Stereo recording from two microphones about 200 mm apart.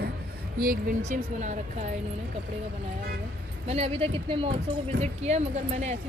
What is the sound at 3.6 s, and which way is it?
A woman's voice, 30° right (ahead or behind).